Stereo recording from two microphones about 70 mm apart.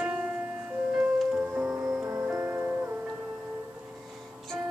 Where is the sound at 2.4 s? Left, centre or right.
Right.